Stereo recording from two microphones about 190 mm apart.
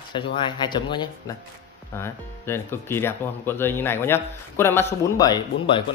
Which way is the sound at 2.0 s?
15° left (ahead or behind).